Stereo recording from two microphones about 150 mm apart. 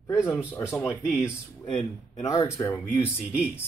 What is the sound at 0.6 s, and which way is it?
Speech, 15° left (ahead or behind).